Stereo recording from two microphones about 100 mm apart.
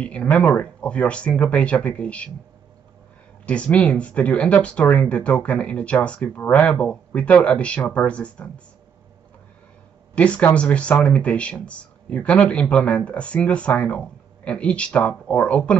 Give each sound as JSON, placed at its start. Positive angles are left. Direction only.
{"t": 0.0, "sound": "speech", "side_deg": 10}
{"t": 3.4, "sound": "speech", "side_deg": 10}
{"t": 10.1, "sound": "speech", "side_deg": 15}